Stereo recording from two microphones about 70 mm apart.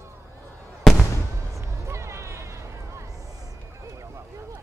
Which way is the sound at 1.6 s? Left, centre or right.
Right.